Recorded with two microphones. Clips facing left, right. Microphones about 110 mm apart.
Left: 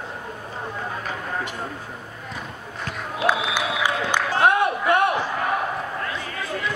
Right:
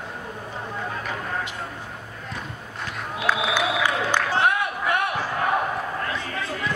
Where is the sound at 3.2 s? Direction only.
15° left (ahead or behind).